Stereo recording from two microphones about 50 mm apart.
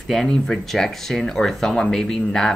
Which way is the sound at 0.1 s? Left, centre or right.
Centre.